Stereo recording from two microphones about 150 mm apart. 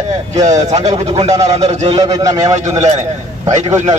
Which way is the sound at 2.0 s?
25° right (ahead or behind).